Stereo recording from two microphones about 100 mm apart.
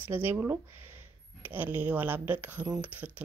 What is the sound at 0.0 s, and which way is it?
Speech, 20° right (ahead or behind).